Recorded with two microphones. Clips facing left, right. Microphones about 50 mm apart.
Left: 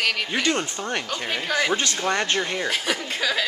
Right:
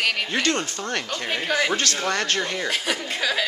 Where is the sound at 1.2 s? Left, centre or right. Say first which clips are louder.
Right 1 dB; centre.